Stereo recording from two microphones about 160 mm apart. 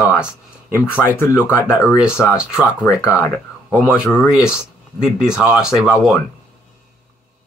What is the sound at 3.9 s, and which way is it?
Speech, 15° left (ahead or behind).